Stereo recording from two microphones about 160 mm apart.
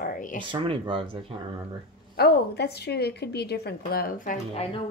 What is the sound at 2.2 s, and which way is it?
A woman's voice, 90° left.